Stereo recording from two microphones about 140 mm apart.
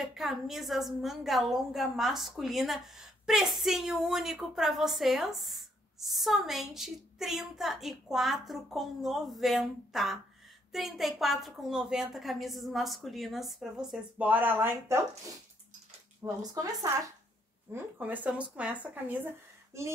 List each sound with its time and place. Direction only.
0.0 s a woman's voice: centre (ahead or behind)
16.2 s speech: 15° right (ahead or behind)
17.7 s speech: 10° right (ahead or behind)